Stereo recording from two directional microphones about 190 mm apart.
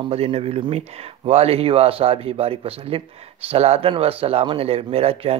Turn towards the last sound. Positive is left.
turn(degrees=-30)  # may be behind; listen again after turning